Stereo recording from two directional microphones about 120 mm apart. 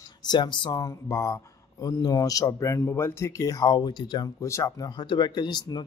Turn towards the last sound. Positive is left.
turn(degrees=35)  # may be behind; listen again after turning